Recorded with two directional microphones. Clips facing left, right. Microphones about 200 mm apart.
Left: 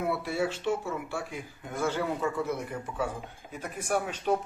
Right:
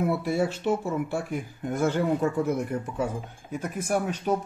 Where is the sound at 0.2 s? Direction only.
45° right (ahead or behind).